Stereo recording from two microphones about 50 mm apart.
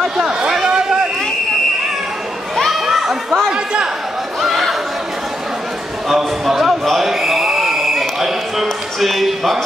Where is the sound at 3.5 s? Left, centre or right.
Centre.